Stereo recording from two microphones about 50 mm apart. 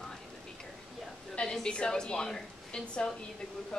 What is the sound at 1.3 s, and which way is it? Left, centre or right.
Speech, centre.